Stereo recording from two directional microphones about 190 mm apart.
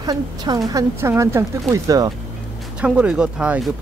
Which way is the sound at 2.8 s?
5° right (ahead or behind).